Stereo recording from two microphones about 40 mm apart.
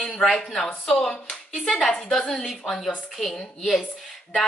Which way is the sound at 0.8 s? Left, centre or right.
Centre.